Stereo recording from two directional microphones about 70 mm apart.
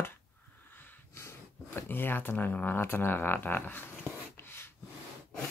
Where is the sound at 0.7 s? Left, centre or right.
Left.